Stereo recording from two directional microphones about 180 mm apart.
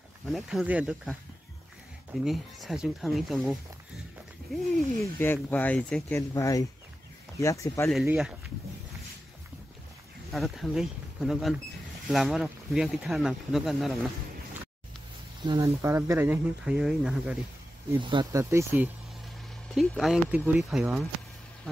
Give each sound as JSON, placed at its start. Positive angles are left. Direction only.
{"t": 0.3, "sound": "speech", "side_deg": 0}
{"t": 2.2, "sound": "speech", "side_deg": 0}
{"t": 4.7, "sound": "speech", "side_deg": 10}
{"t": 6.3, "sound": "speech", "side_deg": 20}
{"t": 7.9, "sound": "speech", "side_deg": 0}
{"t": 10.3, "sound": "speech", "side_deg": 0}
{"t": 15.4, "sound": "speech", "side_deg": -20}
{"t": 18.0, "sound": "speech", "side_deg": -25}
{"t": 19.7, "sound": "speech", "side_deg": 0}